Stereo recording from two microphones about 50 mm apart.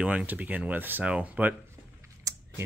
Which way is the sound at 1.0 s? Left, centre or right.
Right.